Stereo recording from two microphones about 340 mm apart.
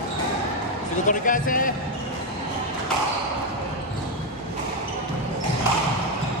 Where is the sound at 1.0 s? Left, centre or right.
Left.